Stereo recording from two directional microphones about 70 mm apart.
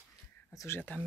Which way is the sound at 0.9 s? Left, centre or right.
Left.